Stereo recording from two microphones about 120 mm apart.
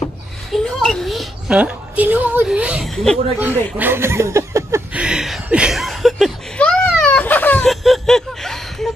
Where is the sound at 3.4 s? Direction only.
15° right (ahead or behind).